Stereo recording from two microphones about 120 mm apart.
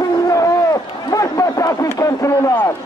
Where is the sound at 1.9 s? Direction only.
25° left (ahead or behind).